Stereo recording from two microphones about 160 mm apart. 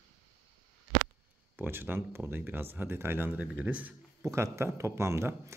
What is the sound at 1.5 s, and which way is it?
Speech, 15° right (ahead or behind).